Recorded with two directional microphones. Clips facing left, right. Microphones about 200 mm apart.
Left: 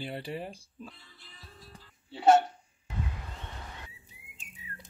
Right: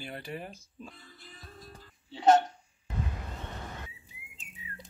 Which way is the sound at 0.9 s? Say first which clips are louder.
Right 5 dB; 45° right (ahead or behind).